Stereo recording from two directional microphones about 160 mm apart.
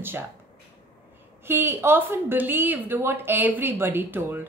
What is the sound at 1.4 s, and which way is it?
Speech, 15° right (ahead or behind).